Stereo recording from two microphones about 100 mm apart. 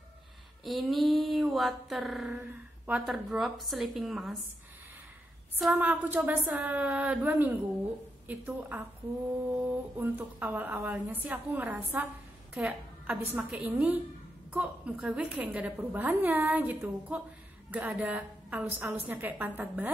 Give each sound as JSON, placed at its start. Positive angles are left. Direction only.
{"t": 0.7, "sound": "mantra", "side_deg": 0}
{"t": 3.1, "sound": "speech", "side_deg": 0}
{"t": 5.7, "sound": "a woman's voice", "side_deg": -20}